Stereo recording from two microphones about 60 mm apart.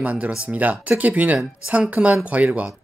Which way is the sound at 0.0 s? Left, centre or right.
Right.